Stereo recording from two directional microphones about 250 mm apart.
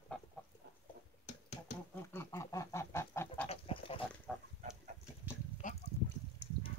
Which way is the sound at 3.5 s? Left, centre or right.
Left.